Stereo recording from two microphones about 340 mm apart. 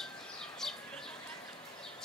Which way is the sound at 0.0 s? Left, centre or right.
Centre.